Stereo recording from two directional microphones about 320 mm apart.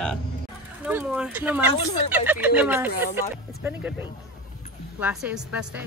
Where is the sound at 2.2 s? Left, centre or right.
Centre.